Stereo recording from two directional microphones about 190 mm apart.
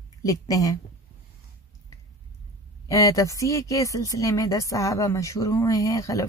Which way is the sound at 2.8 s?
15° left (ahead or behind).